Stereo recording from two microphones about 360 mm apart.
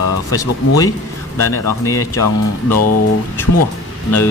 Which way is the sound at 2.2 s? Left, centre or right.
Left.